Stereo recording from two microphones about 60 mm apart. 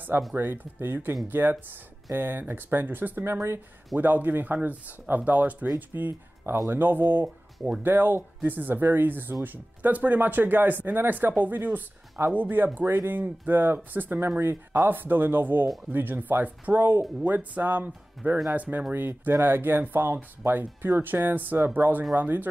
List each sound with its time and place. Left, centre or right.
0.4 s speech: right
3.9 s speech: right